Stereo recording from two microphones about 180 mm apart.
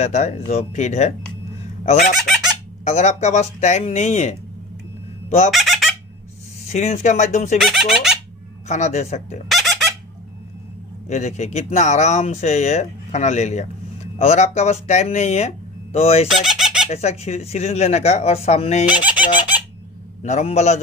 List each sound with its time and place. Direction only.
0.0 s speech: 40° left (ahead or behind)
2.8 s speech: 40° left (ahead or behind)
5.5 s fowl: centre (ahead or behind)
6.6 s speech: 35° left (ahead or behind)
7.5 s speech: centre (ahead or behind)
8.6 s speech: 40° left (ahead or behind)
9.5 s chicken: centre (ahead or behind)
11.1 s speech: 40° left (ahead or behind)
16.3 s fowl: centre (ahead or behind)
16.9 s speech: 35° left (ahead or behind)
18.9 s fowl: 10° right (ahead or behind)
20.2 s speech: 40° left (ahead or behind)